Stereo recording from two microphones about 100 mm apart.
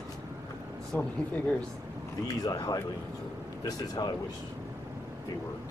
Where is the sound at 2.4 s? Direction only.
40° left (ahead or behind).